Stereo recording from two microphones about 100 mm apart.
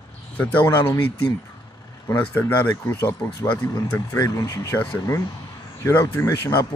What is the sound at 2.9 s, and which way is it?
Speech, 30° left (ahead or behind).